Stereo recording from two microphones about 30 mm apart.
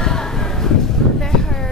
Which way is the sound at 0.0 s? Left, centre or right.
Centre.